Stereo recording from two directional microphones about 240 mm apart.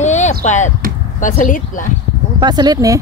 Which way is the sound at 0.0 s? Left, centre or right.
Left.